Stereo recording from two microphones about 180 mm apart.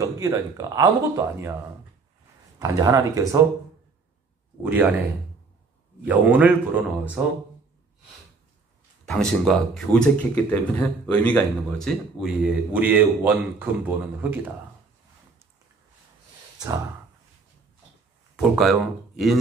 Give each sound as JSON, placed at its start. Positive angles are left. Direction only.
{"t": 0.0, "sound": "a man's voice", "side_deg": -20}
{"t": 2.6, "sound": "a man's voice", "side_deg": -20}
{"t": 4.6, "sound": "a man's voice", "side_deg": -10}
{"t": 6.0, "sound": "a man's voice", "side_deg": -10}
{"t": 9.0, "sound": "speech", "side_deg": 5}
{"t": 12.7, "sound": "a man's voice", "side_deg": -10}
{"t": 16.5, "sound": "a sound", "side_deg": -20}
{"t": 18.3, "sound": "speech", "side_deg": 0}